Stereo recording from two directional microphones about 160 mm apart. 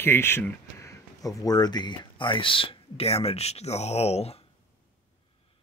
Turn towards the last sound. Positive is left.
turn(degrees=40)  # may be behind; listen again after turning